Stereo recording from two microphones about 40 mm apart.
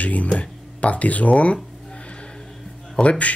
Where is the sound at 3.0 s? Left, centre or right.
Left.